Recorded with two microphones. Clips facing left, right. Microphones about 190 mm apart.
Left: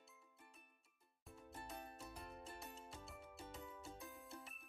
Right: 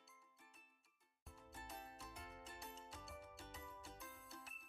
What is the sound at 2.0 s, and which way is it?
Music, 5° left (ahead or behind).